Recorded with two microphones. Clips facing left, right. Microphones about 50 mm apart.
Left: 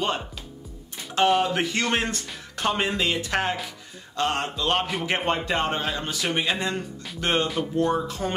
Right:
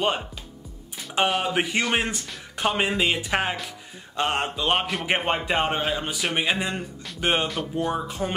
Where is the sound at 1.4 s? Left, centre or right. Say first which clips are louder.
Even; centre.